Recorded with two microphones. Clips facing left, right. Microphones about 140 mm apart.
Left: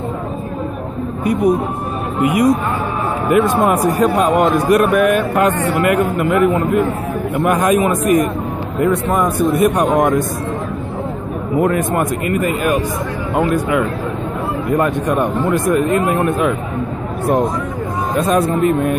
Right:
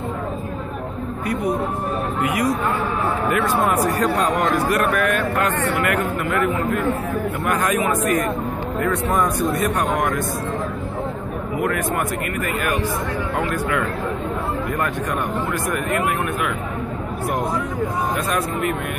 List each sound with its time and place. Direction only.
1.2 s a man's voice: 20° left (ahead or behind)
11.6 s speech: 25° left (ahead or behind)
18.1 s speech: 25° left (ahead or behind)